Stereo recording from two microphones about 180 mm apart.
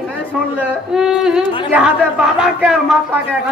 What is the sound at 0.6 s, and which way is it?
A woman's voice, 5° right (ahead or behind).